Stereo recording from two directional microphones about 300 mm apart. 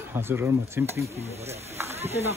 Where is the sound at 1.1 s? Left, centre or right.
Right.